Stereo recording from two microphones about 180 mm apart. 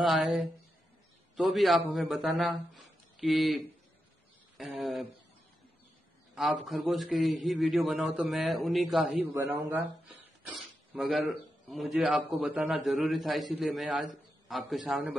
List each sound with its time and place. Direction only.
0.0 s a man's voice: centre (ahead or behind)
6.3 s a man's voice: centre (ahead or behind)
9.3 s a man's voice: 15° right (ahead or behind)
10.0 s speech: centre (ahead or behind)